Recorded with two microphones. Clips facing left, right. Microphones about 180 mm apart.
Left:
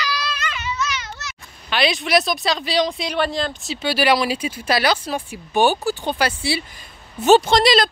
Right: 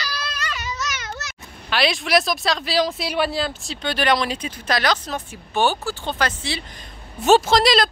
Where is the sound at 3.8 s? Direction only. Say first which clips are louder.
Left 2 dB; 5° left (ahead or behind).